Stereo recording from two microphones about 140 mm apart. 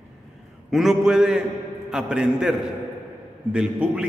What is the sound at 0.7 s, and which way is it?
A man's voice, centre (ahead or behind).